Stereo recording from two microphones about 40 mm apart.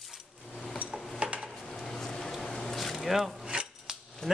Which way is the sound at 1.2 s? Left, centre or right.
Right.